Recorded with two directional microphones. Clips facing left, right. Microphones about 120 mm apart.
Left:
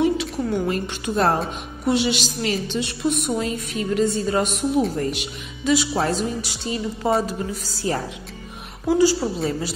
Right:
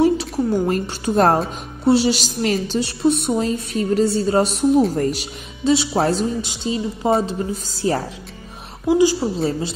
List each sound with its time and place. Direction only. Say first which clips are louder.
0.0 s a woman's voice: right 4 dB; 40° right (ahead or behind)
8.8 s a woman's voice: right 2 dB; 15° right (ahead or behind)
9.4 s a woman's voice: right 3 dB; 25° right (ahead or behind)